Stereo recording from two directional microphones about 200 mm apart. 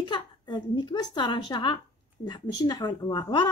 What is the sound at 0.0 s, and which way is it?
A woman's voice, 20° left (ahead or behind).